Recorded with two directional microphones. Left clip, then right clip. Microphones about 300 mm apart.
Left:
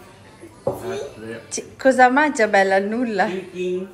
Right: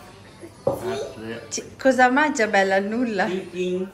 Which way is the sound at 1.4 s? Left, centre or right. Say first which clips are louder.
Left 3 dB; centre.